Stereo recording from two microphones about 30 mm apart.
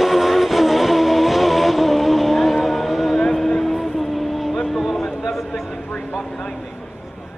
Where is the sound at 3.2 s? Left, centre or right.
Centre.